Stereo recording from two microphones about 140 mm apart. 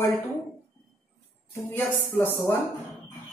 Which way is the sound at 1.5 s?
15° left (ahead or behind).